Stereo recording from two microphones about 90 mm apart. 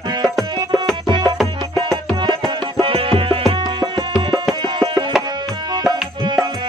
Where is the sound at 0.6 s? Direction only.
50° right (ahead or behind).